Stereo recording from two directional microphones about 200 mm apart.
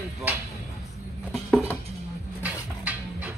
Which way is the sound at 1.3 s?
5° left (ahead or behind).